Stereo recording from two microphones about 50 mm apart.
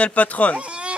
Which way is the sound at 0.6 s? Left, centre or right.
Right.